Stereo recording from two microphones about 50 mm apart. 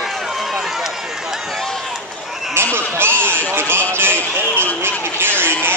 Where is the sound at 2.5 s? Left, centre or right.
Right.